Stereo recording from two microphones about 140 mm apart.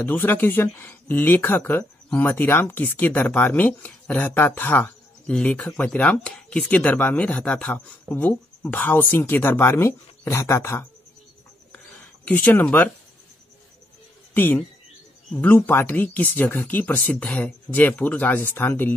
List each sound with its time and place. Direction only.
0.0 s speech: 15° left (ahead or behind)
12.3 s speech: 10° left (ahead or behind)
14.3 s speech: 15° left (ahead or behind)